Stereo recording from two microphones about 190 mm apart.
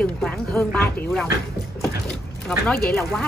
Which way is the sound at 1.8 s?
5° left (ahead or behind).